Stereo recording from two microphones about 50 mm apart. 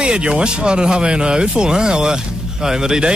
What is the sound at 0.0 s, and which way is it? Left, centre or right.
Speech, centre.